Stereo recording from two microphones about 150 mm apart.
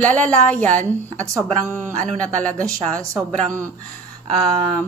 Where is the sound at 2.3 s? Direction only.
55° right (ahead or behind).